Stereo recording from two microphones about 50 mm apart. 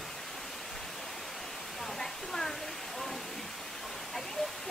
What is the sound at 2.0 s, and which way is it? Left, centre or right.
Hair dryer, centre.